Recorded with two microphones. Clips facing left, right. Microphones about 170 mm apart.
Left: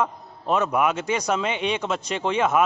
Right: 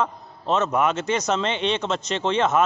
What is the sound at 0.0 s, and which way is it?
A man's voice, 10° left (ahead or behind).